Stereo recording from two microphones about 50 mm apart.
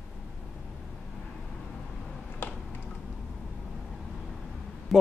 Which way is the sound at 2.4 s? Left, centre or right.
Left.